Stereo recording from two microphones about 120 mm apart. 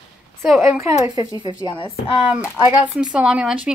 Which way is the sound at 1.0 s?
30° right (ahead or behind).